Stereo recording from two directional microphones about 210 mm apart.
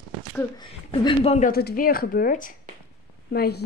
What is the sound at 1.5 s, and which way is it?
A woman's voice, 45° left (ahead or behind).